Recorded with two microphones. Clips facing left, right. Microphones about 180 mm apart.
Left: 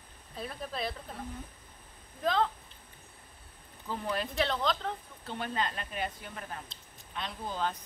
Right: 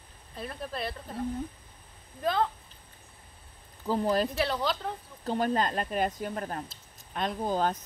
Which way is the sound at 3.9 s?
35° right (ahead or behind).